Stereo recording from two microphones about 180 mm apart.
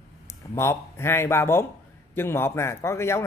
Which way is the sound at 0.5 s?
15° left (ahead or behind).